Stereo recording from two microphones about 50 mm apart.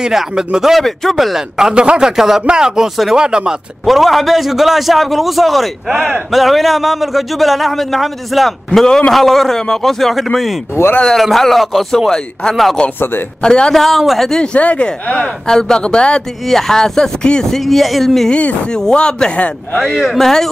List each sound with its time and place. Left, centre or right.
0.0 s speech: centre
0.7 s speech: centre
3.8 s speech: centre
5.9 s speech: centre
6.3 s speech: centre
8.7 s speech: centre
13.4 s speech: centre
13.8 s speech: centre
14.4 s speech: left
15.4 s speech: centre
16.4 s speech: centre
17.5 s speech: centre
18.3 s speech: left
19.8 s speech: centre